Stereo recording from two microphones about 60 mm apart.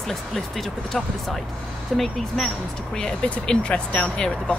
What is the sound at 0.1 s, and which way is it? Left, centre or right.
Speech, centre.